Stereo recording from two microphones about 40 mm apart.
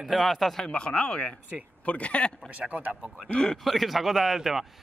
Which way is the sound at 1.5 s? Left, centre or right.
Right.